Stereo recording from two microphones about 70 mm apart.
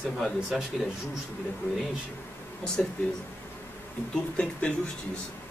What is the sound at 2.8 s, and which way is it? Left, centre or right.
Speech, centre.